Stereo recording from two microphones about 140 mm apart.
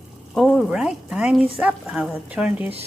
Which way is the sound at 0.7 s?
5° right (ahead or behind).